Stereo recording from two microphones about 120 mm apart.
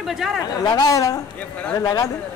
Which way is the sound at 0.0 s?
5° right (ahead or behind).